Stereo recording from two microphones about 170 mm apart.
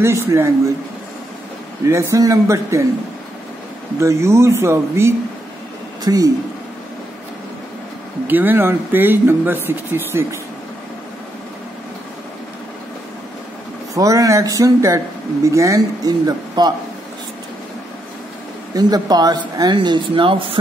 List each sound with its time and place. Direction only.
0.0 s speech: 15° right (ahead or behind)
1.9 s speech: 15° right (ahead or behind)
4.0 s speech: 15° right (ahead or behind)
8.3 s speech: 10° right (ahead or behind)
13.9 s speech: 20° right (ahead or behind)
18.8 s speech: 25° right (ahead or behind)